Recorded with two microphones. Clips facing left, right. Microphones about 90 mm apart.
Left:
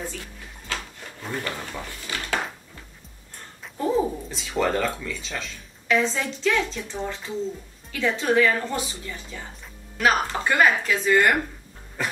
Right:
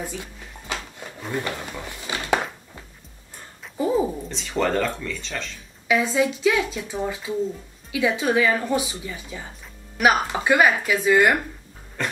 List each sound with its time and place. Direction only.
0.0 s a sound: 15° right (ahead or behind)
1.3 s speech: 15° right (ahead or behind)
3.6 s a sound: 5° right (ahead or behind)
4.3 s speech: 5° left (ahead or behind)
5.9 s speech: 10° right (ahead or behind)
12.0 s cough: 5° left (ahead or behind)